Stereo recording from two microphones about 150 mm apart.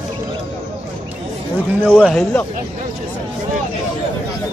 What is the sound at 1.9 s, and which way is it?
Speech, 5° left (ahead or behind).